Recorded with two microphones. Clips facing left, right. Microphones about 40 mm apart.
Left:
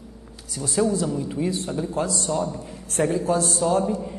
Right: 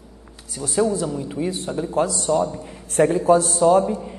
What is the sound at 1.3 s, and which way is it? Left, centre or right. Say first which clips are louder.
A woman's voice: right 1 dB; right.